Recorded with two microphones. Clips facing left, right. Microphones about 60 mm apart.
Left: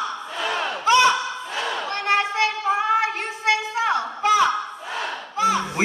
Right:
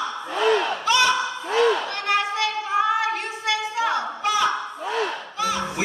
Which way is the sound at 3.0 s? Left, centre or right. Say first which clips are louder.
Left 1 dB; left.